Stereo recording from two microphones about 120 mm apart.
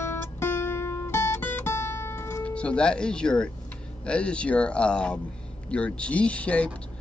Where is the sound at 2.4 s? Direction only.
10° left (ahead or behind).